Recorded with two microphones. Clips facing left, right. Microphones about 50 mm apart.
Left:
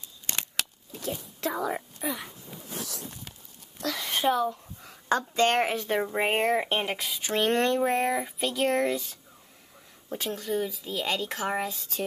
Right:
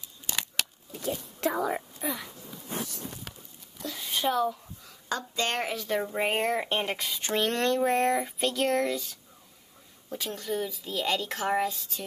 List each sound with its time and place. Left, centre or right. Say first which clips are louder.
0.9 s speech: right 1 dB; centre
3.8 s a sound: left 6 dB; left
4.3 s speech: left 1 dB; centre
4.8 s a woman's voice: left 6 dB; left
5.9 s speech: left 1 dB; centre
7.4 s speech: left 3 dB; centre
7.8 s speech: right 1 dB; centre
10.3 s speech: left 2 dB; centre